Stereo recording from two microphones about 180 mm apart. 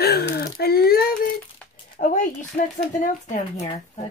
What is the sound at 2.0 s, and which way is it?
Speech, 45° left (ahead or behind).